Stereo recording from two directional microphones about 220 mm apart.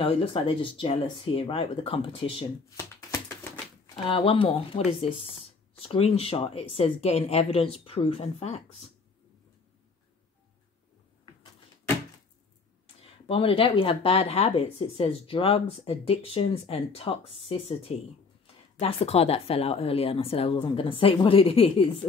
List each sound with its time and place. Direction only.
0.0 s speech: 25° left (ahead or behind)
2.8 s a sound: 10° left (ahead or behind)
4.1 s speech: 25° left (ahead or behind)
13.3 s speech: 25° left (ahead or behind)